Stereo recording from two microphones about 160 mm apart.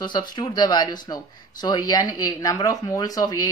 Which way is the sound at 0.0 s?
25° left (ahead or behind).